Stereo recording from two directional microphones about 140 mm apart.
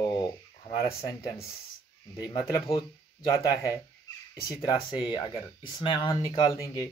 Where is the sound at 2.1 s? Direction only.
20° left (ahead or behind).